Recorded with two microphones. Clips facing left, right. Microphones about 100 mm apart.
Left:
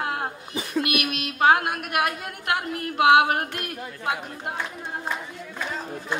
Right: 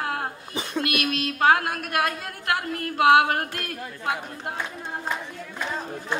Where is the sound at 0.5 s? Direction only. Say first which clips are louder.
Left 2 dB; 25° right (ahead or behind).